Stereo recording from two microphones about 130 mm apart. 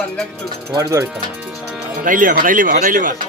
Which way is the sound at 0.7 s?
25° right (ahead or behind).